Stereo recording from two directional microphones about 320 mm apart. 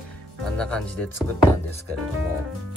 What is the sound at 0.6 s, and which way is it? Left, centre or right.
Speech, centre.